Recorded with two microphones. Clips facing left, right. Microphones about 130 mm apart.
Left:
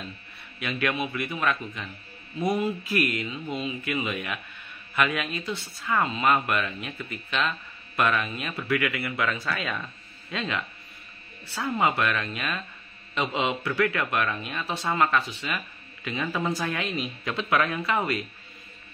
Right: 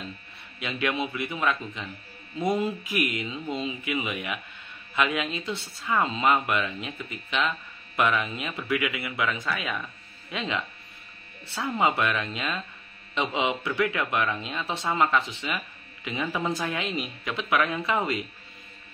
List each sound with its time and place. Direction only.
0.6 s speech: 20° right (ahead or behind)
12.0 s speech: 20° right (ahead or behind)